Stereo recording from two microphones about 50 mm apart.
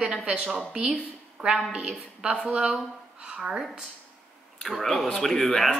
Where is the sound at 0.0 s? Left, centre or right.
Centre.